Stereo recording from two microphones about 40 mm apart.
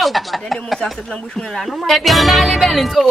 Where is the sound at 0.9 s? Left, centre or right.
Centre.